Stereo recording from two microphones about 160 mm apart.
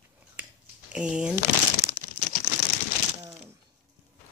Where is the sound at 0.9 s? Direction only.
5° right (ahead or behind).